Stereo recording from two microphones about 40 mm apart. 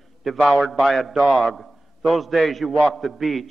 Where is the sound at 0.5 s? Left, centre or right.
Centre.